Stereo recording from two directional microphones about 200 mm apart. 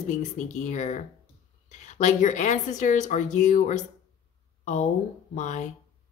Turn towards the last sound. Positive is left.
turn(degrees=35)  # may be behind; listen again after turning